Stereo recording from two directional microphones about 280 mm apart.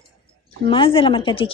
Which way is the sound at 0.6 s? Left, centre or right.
Centre.